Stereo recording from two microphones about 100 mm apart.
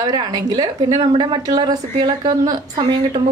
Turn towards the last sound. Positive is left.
turn(degrees=-45)  # may be behind; listen again after turning